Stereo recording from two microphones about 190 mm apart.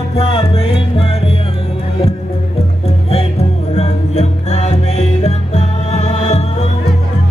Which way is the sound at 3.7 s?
35° left (ahead or behind).